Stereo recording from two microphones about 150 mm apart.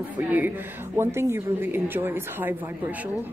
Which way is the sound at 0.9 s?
15° right (ahead or behind).